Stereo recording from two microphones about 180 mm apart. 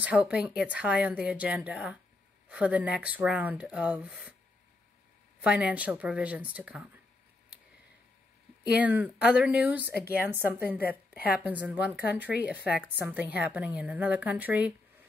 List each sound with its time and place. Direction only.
0.0 s a woman's voice: 10° right (ahead or behind)
5.4 s a woman's voice: 5° right (ahead or behind)
8.7 s a woman's voice: 10° right (ahead or behind)
9.9 s speech: 60° left (ahead or behind)
10.2 s a woman's voice: 10° right (ahead or behind)